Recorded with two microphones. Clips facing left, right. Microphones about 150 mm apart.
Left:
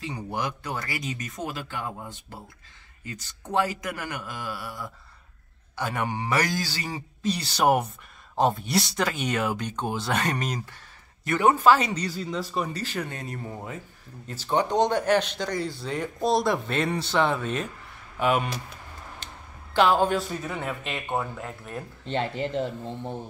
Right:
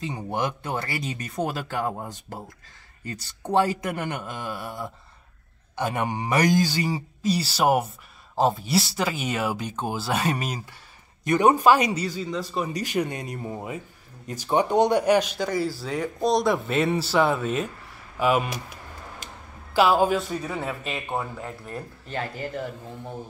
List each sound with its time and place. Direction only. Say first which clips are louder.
0.0 s speech: right 3 dB; 20° right (ahead or behind)
12.1 s speech: right 1 dB; centre (ahead or behind)
12.7 s speech: right 6 dB; 15° right (ahead or behind)
19.2 s a sound: right 2 dB; 10° right (ahead or behind)
19.7 s speech: right 1 dB; 5° right (ahead or behind)
22.0 s speech: left 5 dB; 25° left (ahead or behind)